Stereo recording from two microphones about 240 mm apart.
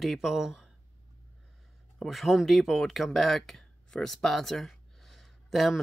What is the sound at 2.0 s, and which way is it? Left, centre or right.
Speech, centre.